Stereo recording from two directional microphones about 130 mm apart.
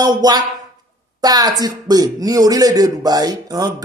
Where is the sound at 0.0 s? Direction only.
30° right (ahead or behind).